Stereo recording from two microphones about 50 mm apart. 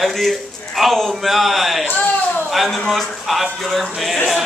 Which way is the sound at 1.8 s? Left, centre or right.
Left.